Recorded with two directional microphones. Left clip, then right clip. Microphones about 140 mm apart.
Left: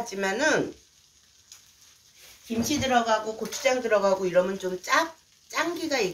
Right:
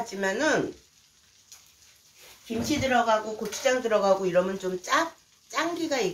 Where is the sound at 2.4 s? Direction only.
65° left (ahead or behind).